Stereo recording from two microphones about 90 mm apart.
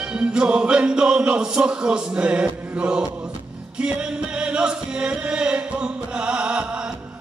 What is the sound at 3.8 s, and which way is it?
Chant, 10° right (ahead or behind).